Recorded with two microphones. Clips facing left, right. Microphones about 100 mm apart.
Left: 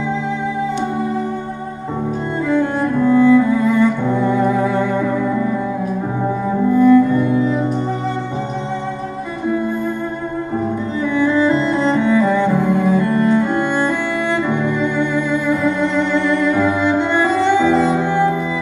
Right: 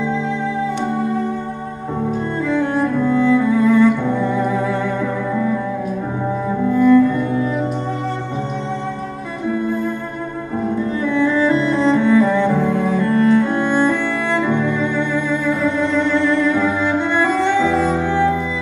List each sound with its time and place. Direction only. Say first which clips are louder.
2.4 s cello: left 1 dB; centre (ahead or behind)
4.3 s music: left 3 dB; 15° left (ahead or behind)
6.7 s cello: left 1 dB; 15° left (ahead or behind)
11.1 s cello: left 1 dB; 10° left (ahead or behind)
16.8 s music: left 2 dB; 5° left (ahead or behind)
17.6 s music: left 2 dB; 20° left (ahead or behind)